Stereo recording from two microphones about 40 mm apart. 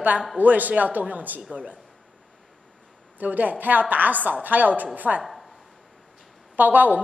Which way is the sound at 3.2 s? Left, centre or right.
Right.